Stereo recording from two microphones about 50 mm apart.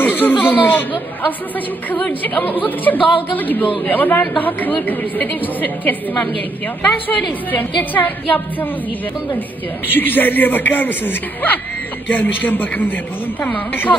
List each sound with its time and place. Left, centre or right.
0.0 s speech: left
7.1 s speech: left
9.8 s speech: left